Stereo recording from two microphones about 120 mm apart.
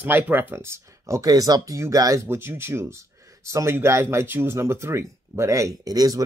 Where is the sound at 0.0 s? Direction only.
15° right (ahead or behind).